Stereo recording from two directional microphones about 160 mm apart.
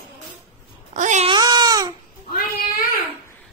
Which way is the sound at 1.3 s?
25° right (ahead or behind).